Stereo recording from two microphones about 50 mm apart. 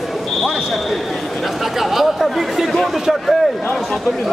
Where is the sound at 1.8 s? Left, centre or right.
Centre.